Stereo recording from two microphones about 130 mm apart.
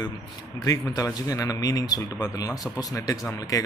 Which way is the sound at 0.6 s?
25° left (ahead or behind).